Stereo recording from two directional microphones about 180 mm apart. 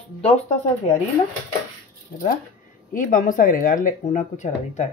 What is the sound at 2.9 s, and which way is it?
Speech, 45° left (ahead or behind).